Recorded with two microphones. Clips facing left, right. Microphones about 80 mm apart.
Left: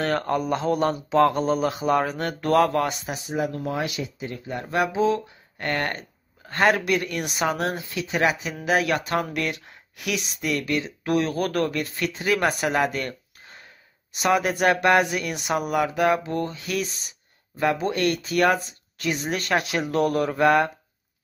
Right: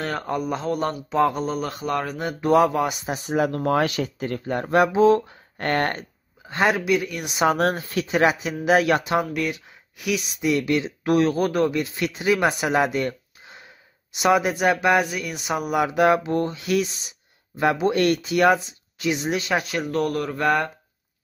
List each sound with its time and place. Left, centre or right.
0.0 s speech: centre
2.1 s speech: centre
3.3 s speech: right
6.4 s a man's voice: centre
7.5 s speech: right
9.0 s speech: centre
9.3 s speech: centre
10.4 s speech: right
14.5 s speech: centre
15.6 s speech: centre
18.3 s speech: centre
19.6 s speech: centre